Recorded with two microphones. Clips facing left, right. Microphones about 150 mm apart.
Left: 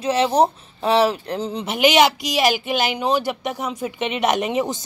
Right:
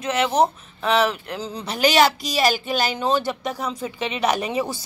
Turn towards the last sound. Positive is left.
turn(degrees=20)  # may be behind; listen again after turning